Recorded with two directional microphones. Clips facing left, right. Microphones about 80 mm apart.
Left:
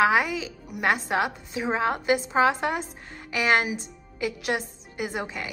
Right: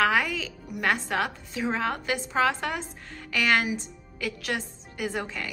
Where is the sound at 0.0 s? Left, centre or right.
Centre.